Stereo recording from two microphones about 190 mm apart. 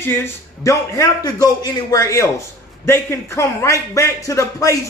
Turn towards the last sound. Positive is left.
turn(degrees=15)  # may be behind; listen again after turning